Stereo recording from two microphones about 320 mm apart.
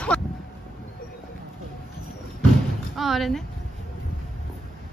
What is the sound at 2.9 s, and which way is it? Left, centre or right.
Speech, centre.